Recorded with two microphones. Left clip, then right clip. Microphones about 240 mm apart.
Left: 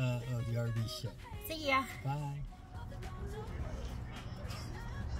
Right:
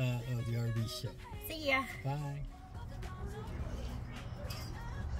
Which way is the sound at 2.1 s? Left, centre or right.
Centre.